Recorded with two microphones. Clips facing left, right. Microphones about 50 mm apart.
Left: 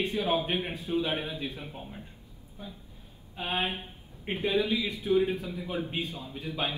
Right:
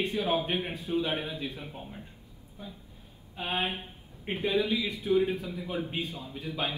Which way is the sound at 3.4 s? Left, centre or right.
Left.